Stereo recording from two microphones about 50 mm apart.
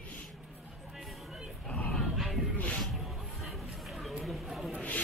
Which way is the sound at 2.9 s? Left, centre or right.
Centre.